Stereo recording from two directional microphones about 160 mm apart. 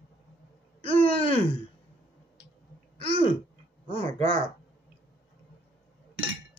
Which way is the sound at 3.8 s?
35° left (ahead or behind).